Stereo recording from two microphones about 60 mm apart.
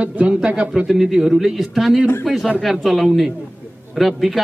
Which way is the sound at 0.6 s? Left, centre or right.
Centre.